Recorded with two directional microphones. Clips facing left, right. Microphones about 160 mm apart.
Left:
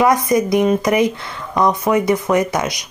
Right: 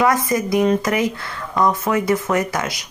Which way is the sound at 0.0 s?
20° left (ahead or behind).